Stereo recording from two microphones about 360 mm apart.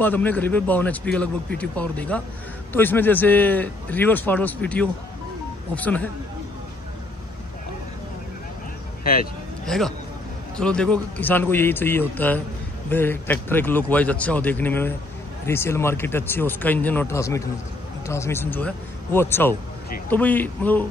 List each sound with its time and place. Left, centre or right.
0.0 s a man's voice: centre
9.7 s a man's voice: centre